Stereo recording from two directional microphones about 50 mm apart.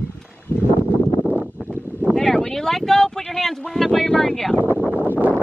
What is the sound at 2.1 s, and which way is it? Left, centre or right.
Speech, centre.